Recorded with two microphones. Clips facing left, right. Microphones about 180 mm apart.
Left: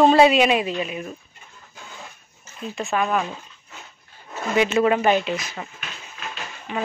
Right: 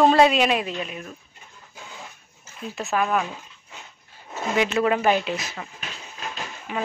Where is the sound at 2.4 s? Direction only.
5° right (ahead or behind).